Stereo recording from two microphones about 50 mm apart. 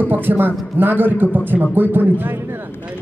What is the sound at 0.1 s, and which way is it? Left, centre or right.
A man's voice, right.